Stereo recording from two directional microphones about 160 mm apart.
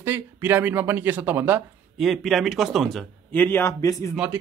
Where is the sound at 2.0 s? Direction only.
Centre (ahead or behind).